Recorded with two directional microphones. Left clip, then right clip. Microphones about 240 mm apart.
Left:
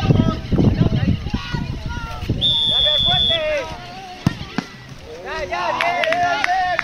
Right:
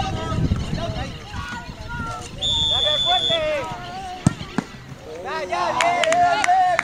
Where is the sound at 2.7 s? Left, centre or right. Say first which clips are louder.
Left 3 dB; right.